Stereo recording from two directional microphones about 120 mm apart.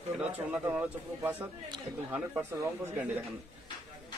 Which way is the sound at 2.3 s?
20° right (ahead or behind).